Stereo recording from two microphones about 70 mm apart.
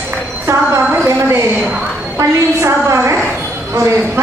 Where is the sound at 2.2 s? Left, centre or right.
Right.